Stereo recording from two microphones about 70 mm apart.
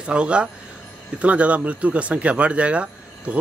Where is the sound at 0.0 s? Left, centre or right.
Centre.